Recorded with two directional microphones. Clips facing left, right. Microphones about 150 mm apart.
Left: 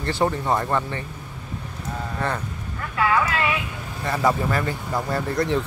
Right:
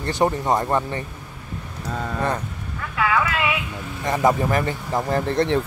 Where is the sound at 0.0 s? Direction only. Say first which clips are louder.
Right 2 dB; 20° right (ahead or behind).